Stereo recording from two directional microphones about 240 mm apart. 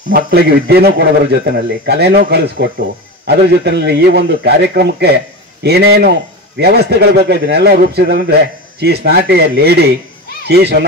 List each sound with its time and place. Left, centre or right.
0.1 s a man's voice: right